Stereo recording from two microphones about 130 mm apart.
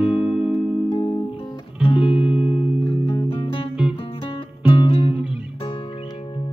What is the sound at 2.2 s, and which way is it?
Music, 5° right (ahead or behind).